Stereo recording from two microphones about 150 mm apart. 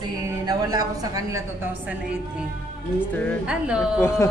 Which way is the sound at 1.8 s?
5° right (ahead or behind).